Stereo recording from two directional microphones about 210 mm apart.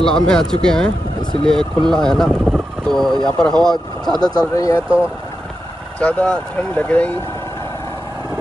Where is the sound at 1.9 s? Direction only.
5° left (ahead or behind).